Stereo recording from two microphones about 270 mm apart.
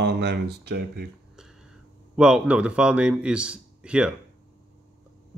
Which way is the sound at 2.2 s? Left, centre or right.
Centre.